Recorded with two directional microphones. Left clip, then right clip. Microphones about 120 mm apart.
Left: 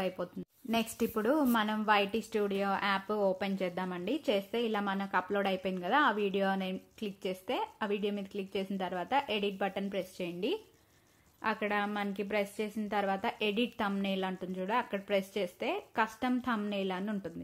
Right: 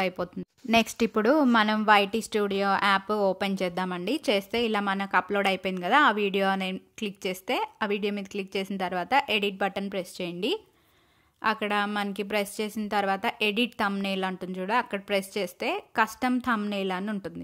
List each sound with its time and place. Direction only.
0.0 s a woman's voice: 25° right (ahead or behind)